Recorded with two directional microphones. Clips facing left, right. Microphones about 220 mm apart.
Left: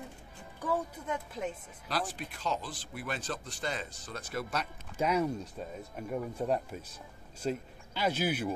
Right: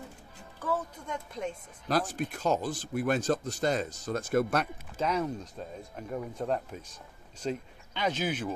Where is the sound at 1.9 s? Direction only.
45° right (ahead or behind).